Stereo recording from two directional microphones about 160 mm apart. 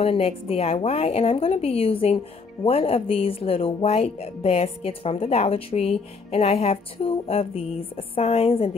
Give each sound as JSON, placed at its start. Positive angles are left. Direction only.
{"t": 0.0, "sound": "a woman's voice", "side_deg": 40}